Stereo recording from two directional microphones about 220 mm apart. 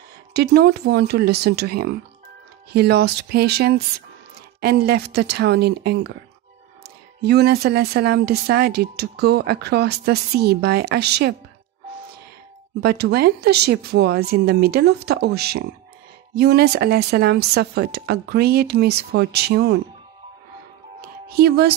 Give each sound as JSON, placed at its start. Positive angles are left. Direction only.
{"t": 0.3, "sound": "speech", "side_deg": -50}
{"t": 7.2, "sound": "speech", "side_deg": -45}
{"t": 12.8, "sound": "speech", "side_deg": -45}
{"t": 21.0, "sound": "music", "side_deg": -45}